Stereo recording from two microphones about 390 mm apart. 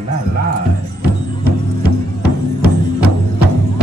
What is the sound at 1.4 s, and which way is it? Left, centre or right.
Music, right.